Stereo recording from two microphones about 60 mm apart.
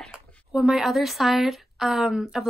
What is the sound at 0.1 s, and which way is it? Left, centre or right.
A woman's voice, centre.